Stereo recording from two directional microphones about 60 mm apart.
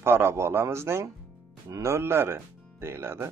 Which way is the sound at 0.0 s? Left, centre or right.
Right.